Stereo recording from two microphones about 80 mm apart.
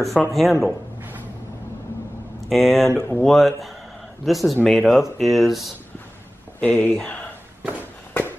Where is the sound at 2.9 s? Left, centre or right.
Left.